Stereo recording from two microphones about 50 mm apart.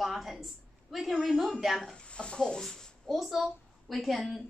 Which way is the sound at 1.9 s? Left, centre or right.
Left.